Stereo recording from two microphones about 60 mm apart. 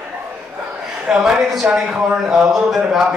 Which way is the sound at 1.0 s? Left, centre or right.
Centre.